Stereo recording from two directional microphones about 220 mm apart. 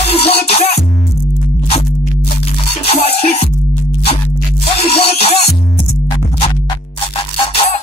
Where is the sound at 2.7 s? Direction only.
25° left (ahead or behind).